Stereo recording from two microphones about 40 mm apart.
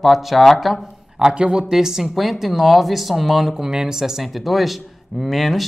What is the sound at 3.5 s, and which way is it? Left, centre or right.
Speech, centre.